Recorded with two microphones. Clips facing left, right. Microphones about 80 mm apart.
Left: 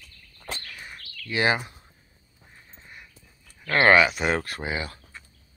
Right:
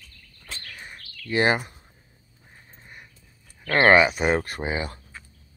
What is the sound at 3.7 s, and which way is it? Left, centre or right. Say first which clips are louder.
Speech: right 1 dB; right.